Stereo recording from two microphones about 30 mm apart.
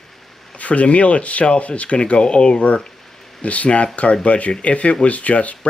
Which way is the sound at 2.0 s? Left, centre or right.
Left.